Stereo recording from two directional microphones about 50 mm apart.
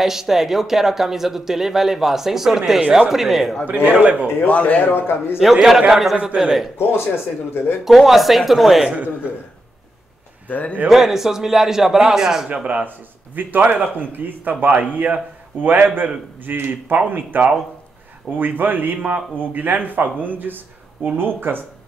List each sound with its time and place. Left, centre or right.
0.0 s speech: centre
3.6 s a man's voice: right
4.5 s speech: left
4.9 s a man's voice: left
5.4 s speech: centre
6.2 s speech: centre
7.5 s a man's voice: left
7.8 s speech: centre
10.5 s a man's voice: left
10.9 s speech: centre
12.8 s speech: right